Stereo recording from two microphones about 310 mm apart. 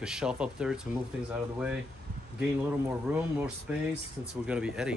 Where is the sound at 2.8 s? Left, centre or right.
Centre.